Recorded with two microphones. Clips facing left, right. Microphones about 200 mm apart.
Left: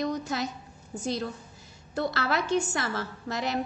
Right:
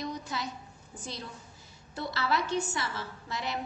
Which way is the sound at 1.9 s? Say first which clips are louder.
Left 6 dB; 50° left (ahead or behind).